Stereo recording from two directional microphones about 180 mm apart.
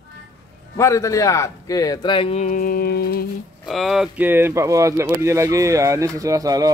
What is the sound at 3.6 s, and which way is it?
Speech, centre (ahead or behind).